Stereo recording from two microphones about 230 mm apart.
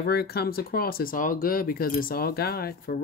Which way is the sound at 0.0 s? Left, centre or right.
Left.